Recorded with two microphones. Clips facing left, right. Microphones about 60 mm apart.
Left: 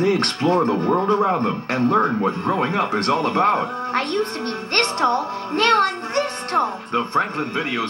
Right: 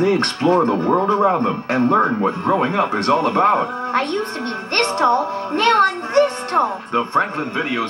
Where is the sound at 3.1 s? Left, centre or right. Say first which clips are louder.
Right 4 dB; right.